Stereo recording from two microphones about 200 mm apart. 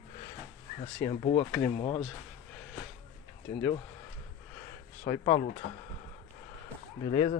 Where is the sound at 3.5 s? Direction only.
10° left (ahead or behind).